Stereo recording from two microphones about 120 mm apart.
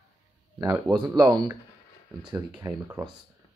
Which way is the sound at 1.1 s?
40° right (ahead or behind).